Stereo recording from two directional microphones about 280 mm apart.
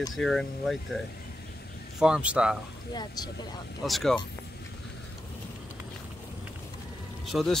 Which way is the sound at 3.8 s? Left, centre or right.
Centre.